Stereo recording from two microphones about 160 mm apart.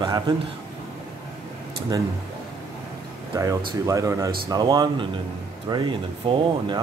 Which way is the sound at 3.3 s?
20° right (ahead or behind).